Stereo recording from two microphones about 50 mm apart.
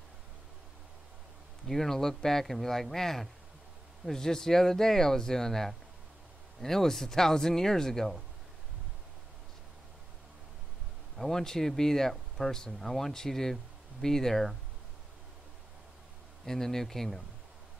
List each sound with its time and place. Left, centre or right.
1.7 s speech: centre
11.1 s speech: centre
16.4 s speech: centre